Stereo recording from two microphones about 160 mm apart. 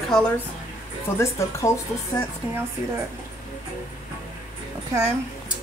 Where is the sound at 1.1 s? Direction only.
20° left (ahead or behind).